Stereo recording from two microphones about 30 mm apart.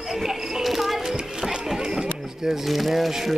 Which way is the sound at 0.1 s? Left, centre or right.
Centre.